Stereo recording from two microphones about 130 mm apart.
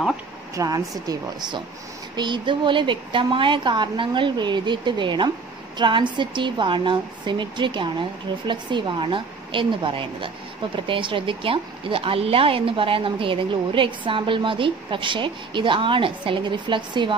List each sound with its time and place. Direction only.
0.6 s a woman's voice: 25° right (ahead or behind)